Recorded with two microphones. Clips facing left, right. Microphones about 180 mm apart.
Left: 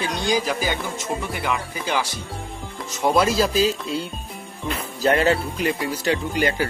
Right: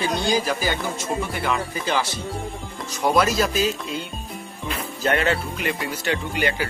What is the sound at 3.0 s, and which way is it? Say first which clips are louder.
Speech: left 1 dB; 25° left (ahead or behind).